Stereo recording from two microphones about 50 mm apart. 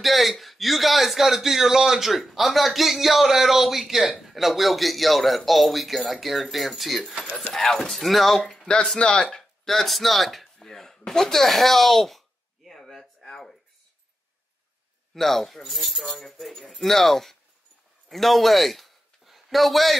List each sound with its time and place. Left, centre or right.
0.0 s a man's voice: centre
8.5 s speech: centre
9.7 s a sound: centre
15.1 s a man's voice: centre